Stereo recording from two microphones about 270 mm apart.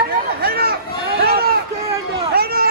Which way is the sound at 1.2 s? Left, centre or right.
Right.